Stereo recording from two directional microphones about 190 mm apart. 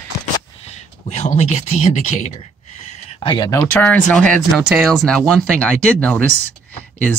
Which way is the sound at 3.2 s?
20° left (ahead or behind).